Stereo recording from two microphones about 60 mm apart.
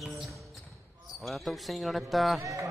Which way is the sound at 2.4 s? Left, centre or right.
Right.